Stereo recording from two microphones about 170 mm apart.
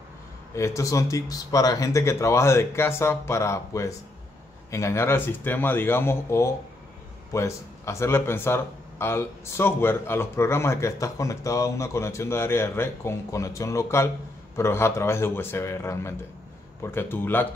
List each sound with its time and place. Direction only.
0.6 s speech: 20° left (ahead or behind)